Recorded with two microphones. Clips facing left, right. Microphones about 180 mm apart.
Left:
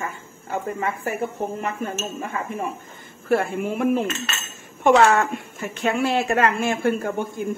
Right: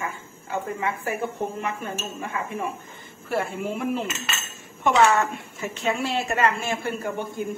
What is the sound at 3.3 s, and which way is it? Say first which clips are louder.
A woman's voice: left 5 dB; 55° left (ahead or behind).